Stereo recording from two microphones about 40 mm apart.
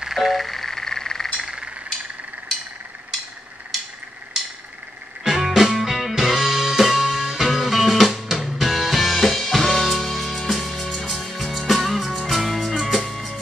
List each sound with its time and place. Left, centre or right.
0.1 s music: centre
5.2 s music: centre